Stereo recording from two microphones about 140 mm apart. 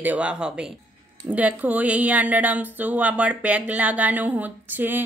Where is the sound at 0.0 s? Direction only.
10° right (ahead or behind).